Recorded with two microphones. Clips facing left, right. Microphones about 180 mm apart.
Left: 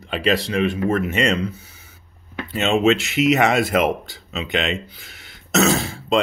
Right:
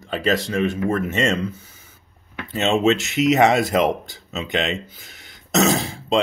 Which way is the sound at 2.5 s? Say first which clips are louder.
Left 1 dB; 40° right (ahead or behind).